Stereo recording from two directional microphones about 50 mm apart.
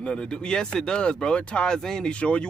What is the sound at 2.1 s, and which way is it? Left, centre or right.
Speech, left.